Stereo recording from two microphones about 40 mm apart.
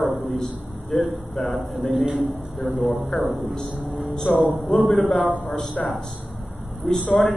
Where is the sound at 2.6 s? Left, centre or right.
Left.